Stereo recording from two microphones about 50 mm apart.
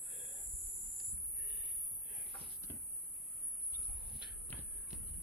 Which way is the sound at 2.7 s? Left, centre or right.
Left.